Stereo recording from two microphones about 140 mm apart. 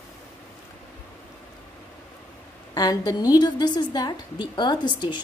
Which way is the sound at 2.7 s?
25° left (ahead or behind).